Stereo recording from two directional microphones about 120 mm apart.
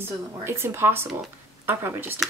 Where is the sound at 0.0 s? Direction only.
20° right (ahead or behind).